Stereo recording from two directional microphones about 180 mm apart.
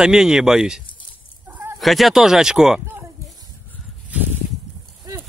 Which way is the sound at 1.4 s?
10° right (ahead or behind).